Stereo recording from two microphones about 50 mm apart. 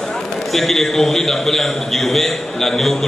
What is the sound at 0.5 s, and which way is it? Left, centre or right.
A man's voice, centre.